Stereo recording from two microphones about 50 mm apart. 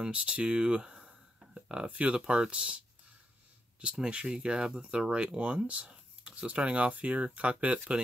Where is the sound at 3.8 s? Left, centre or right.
Right.